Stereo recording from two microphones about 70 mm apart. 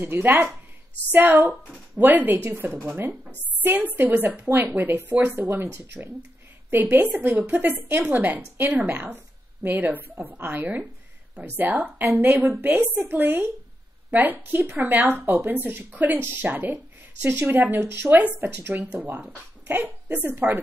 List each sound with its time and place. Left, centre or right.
0.0 s speech: right
3.6 s a woman's voice: right